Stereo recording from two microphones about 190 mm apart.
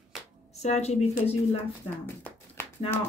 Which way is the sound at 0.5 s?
35° left (ahead or behind).